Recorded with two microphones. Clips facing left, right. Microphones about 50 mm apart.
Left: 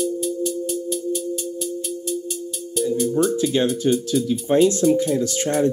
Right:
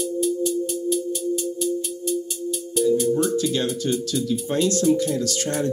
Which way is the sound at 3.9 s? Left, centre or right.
Left.